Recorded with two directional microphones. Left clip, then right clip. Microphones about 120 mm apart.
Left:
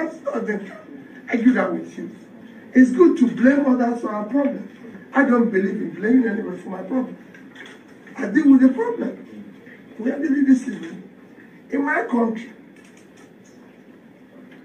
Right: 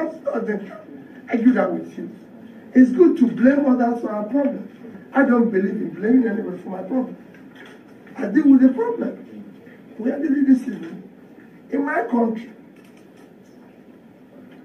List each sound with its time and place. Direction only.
0.0 s a woman's voice: 40° right (ahead or behind)